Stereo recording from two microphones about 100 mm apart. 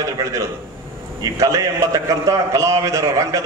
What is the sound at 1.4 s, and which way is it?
A man's voice, 30° right (ahead or behind).